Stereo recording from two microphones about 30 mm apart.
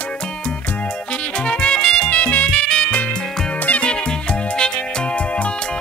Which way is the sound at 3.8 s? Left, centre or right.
Left.